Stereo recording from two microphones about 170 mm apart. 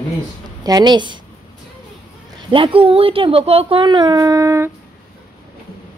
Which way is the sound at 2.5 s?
30° right (ahead or behind).